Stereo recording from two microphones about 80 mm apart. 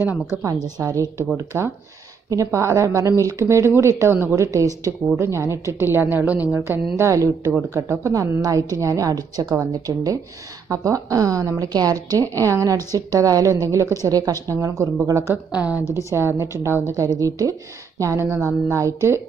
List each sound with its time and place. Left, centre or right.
0.7 s a woman's voice: right
7.0 s a woman's voice: right
10.7 s a woman's voice: right
15.5 s a woman's voice: centre
16.1 s speech: right